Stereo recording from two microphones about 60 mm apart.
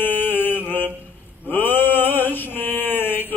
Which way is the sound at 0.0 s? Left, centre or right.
Left.